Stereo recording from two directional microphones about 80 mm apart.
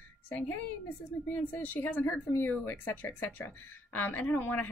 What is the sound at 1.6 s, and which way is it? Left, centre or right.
Speech, left.